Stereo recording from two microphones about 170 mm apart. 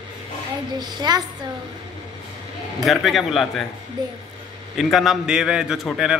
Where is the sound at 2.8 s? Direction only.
Centre (ahead or behind).